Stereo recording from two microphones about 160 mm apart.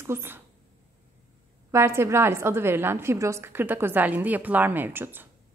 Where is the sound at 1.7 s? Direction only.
15° right (ahead or behind).